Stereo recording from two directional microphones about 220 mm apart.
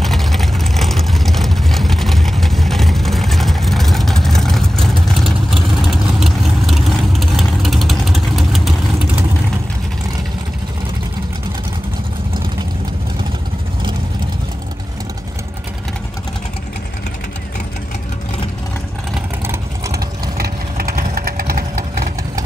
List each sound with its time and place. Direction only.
0.0 s vehicle: centre (ahead or behind)
20.3 s vehicle: 45° right (ahead or behind)